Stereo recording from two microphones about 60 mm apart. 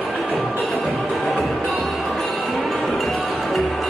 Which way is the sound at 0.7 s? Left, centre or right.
Centre.